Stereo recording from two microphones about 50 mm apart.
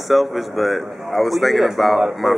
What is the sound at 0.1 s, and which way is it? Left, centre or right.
Speech, centre.